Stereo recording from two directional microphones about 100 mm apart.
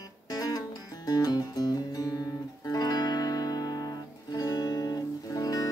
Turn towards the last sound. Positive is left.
turn(degrees=40)  # may be behind; listen again after turning